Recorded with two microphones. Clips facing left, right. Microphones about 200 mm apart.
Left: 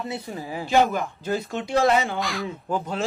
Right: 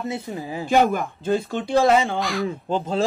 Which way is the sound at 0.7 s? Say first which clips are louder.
Right 2 dB; 50° right (ahead or behind).